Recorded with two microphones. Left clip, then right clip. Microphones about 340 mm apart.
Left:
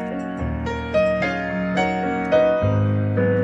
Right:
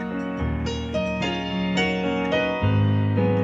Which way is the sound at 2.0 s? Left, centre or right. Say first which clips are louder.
Left 5 dB; left.